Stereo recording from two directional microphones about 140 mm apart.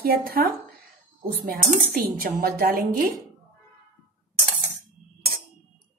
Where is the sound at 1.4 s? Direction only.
85° right.